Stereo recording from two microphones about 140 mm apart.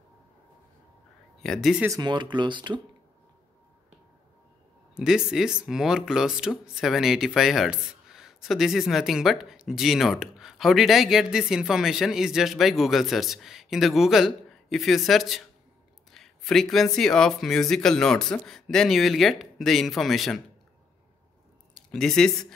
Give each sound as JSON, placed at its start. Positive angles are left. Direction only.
{"t": 1.4, "sound": "speech", "side_deg": 0}
{"t": 1.9, "sound": "speech", "side_deg": -30}
{"t": 4.9, "sound": "speech", "side_deg": -5}
{"t": 21.9, "sound": "speech", "side_deg": 5}